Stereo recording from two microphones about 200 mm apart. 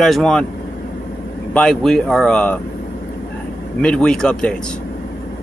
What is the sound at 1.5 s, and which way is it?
Speech, 5° left (ahead or behind).